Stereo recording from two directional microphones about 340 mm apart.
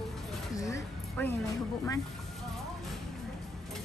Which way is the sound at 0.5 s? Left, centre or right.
Centre.